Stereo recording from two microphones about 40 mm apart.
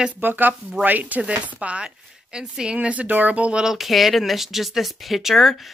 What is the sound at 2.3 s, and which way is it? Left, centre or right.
A woman's voice, right.